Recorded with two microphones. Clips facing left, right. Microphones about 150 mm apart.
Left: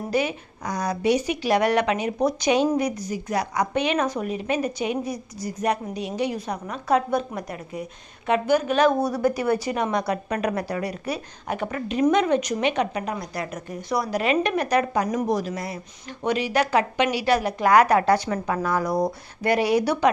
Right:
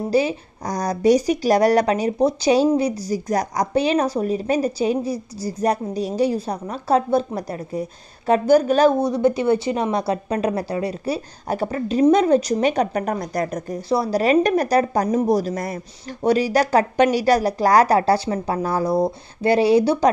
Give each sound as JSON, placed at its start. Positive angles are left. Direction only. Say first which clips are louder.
{"t": 0.1, "sound": "speech", "louder": "right 4 dB", "side_deg": -30}
{"t": 9.0, "sound": "speech", "louder": "right 4 dB", "side_deg": -25}